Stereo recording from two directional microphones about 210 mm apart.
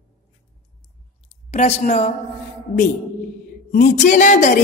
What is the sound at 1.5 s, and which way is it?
Speech, 30° left (ahead or behind).